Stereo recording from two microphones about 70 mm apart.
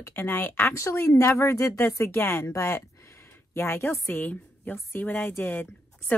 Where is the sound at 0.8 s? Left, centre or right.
Left.